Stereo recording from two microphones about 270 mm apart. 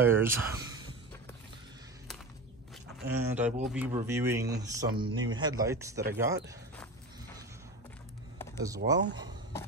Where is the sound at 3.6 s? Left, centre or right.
Centre.